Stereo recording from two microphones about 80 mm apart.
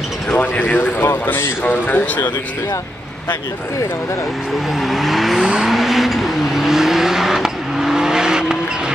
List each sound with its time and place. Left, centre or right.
0.3 s a man's voice: left
4.8 s vehicle: centre